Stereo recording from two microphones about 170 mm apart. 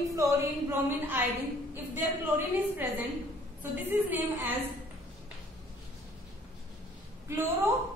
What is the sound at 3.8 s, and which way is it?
Speech, 10° right (ahead or behind).